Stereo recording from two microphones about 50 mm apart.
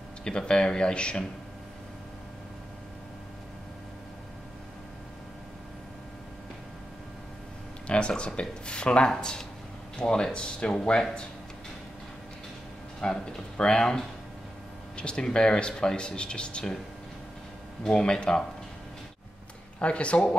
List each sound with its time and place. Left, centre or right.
0.2 s speech: centre
7.8 s a sound: left
8.4 s speech: left
13.0 s speech: centre
17.8 s speech: centre
19.8 s speech: left